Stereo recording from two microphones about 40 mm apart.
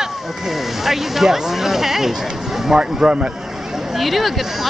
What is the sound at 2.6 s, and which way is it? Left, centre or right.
Speech, right.